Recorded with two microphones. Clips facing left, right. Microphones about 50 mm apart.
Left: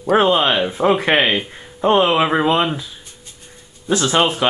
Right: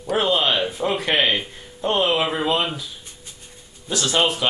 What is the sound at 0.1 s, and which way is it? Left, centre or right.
Speech, left.